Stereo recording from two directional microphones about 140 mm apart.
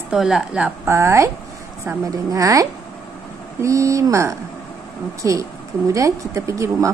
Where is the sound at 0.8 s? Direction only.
20° right (ahead or behind).